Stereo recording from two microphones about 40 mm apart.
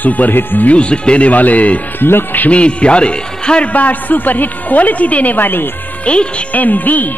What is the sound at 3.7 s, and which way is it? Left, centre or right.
A woman's voice, left.